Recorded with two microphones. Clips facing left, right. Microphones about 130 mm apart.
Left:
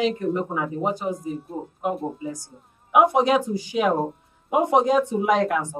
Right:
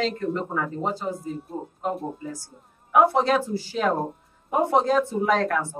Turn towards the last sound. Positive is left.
turn(degrees=15)  # may be behind; listen again after turning